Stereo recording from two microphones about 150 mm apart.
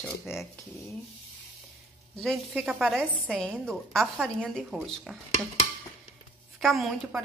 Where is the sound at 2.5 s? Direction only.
10° right (ahead or behind).